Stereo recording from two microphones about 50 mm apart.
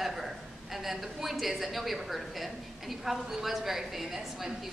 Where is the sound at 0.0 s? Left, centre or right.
Centre.